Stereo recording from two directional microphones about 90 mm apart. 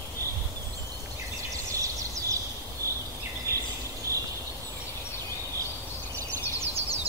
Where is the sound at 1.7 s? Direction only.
35° right (ahead or behind).